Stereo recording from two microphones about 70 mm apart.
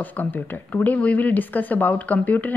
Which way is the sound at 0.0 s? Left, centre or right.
Left.